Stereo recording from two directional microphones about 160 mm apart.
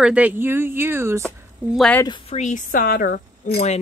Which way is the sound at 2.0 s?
30° left (ahead or behind).